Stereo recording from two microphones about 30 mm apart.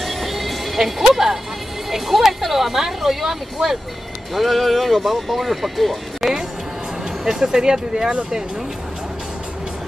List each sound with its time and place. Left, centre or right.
0.0 s music: centre
1.1 s speech: centre
7.2 s speech: centre